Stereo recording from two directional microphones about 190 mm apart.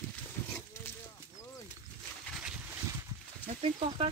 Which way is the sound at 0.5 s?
10° left (ahead or behind).